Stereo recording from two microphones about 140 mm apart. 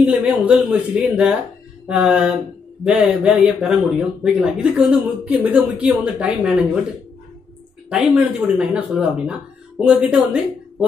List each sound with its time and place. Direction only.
0.0 s speech: 10° right (ahead or behind)
7.9 s speech: 5° right (ahead or behind)